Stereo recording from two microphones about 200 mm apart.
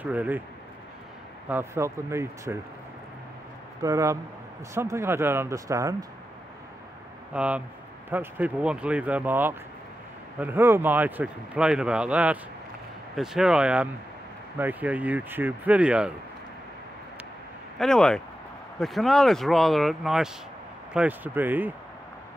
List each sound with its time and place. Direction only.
0.0 s speech: 10° right (ahead or behind)
1.5 s speech: 10° right (ahead or behind)
3.8 s speech: 15° right (ahead or behind)
7.3 s speech: 5° right (ahead or behind)
17.7 s speech: 5° left (ahead or behind)